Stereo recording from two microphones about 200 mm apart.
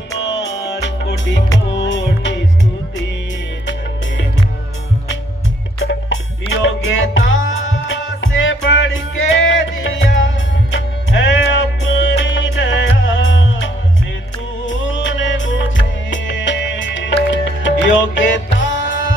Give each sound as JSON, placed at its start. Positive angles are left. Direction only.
{"t": 0.1, "sound": "music", "side_deg": 60}
{"t": 5.8, "sound": "music", "side_deg": 70}
{"t": 14.7, "sound": "music", "side_deg": 70}